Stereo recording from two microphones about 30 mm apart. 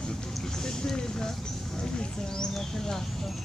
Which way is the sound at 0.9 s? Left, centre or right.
Left.